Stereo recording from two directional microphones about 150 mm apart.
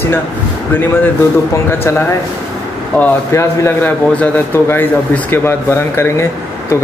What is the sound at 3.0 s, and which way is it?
A man's voice, 20° left (ahead or behind).